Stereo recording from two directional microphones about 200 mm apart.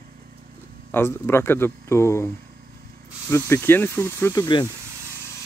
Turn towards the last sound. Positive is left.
turn(degrees=20)  # may be behind; listen again after turning